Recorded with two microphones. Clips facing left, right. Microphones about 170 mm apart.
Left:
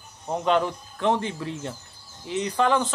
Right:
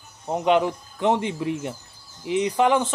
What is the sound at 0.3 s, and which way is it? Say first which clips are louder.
Speech: right 3 dB; 15° right (ahead or behind).